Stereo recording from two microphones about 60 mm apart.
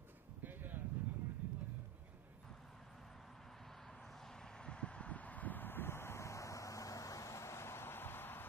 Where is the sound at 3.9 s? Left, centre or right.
Centre.